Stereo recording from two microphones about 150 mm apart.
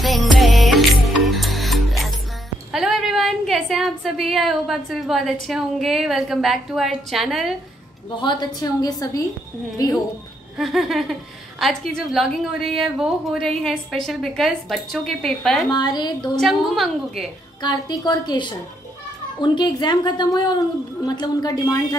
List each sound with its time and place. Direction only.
0.0 s music: centre (ahead or behind)
2.7 s a woman's voice: centre (ahead or behind)
8.2 s a woman's voice: 30° left (ahead or behind)
10.6 s a woman's voice: centre (ahead or behind)
15.7 s a woman's voice: 30° left (ahead or behind)
16.3 s a woman's voice: centre (ahead or behind)
17.6 s a woman's voice: 30° left (ahead or behind)